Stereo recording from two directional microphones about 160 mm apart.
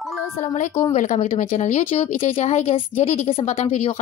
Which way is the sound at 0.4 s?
50° left (ahead or behind).